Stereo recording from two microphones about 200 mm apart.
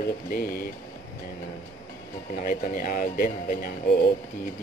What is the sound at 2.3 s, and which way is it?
Speech, 40° left (ahead or behind).